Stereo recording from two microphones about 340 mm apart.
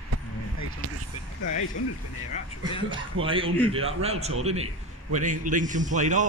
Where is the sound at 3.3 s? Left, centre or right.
Centre.